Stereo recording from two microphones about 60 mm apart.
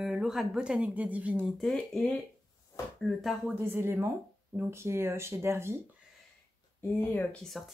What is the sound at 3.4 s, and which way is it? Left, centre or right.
Speech, right.